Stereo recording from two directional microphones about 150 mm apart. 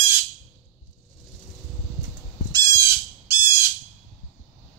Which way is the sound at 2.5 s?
25° right (ahead or behind).